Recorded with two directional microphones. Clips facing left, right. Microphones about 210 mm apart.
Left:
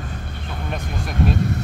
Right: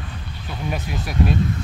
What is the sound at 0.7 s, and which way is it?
Speech, 5° right (ahead or behind).